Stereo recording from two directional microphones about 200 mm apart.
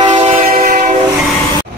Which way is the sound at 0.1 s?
40° right (ahead or behind).